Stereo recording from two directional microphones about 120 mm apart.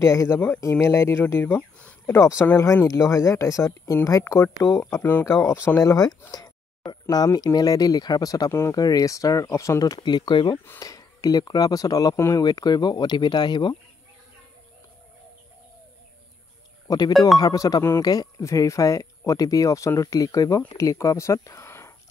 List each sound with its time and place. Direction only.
0.0 s speech: 20° left (ahead or behind)
5.8 s speech: 30° left (ahead or behind)
10.0 s speech: 40° left (ahead or behind)
10.8 s speech: 30° left (ahead or behind)
16.8 s speech: 30° left (ahead or behind)